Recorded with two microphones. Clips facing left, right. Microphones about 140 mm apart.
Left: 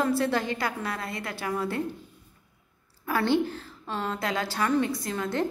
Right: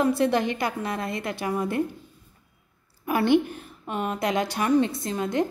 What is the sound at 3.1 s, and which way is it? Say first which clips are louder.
A woman's voice: right 4 dB; 15° right (ahead or behind).